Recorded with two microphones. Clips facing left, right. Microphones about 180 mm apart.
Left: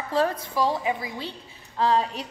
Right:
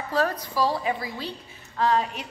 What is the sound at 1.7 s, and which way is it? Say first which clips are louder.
Speech: left 1 dB; 30° left (ahead or behind).